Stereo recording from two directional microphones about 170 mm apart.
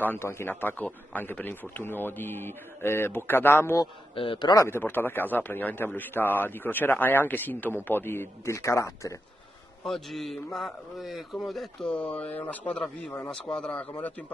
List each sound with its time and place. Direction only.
0.0 s a man's voice: 15° left (ahead or behind)
4.1 s a man's voice: 30° left (ahead or behind)
4.6 s a man's voice: 15° left (ahead or behind)
9.8 s a man's voice: centre (ahead or behind)